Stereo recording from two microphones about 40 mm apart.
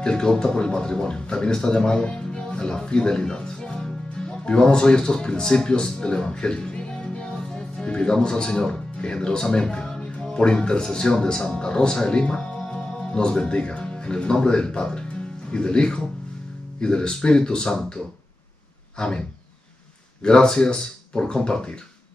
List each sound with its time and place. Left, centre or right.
0.0 s speech: centre
20.2 s speech: centre